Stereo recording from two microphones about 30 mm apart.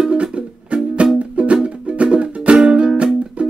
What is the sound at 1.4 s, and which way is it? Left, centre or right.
Music, right.